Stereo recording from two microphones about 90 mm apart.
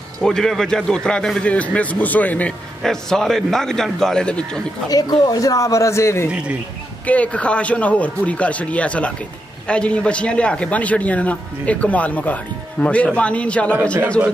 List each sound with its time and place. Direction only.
0.2 s a man's voice: 5° left (ahead or behind)
2.8 s a man's voice: 5° left (ahead or behind)
4.8 s speech: 45° left (ahead or behind)
7.1 s a man's voice: 15° left (ahead or behind)